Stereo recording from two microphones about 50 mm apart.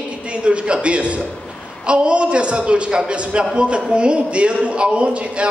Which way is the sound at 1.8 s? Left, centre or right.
Right.